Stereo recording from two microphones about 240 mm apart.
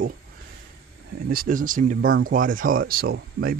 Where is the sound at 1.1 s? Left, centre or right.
Right.